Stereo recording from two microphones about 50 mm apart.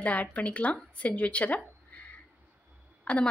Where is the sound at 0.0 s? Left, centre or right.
Left.